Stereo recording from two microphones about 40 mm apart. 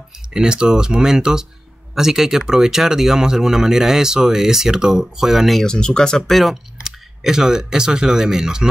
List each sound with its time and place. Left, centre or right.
0.3 s speech: right
5.6 s speech: centre
6.2 s speech: centre
6.8 s speech: centre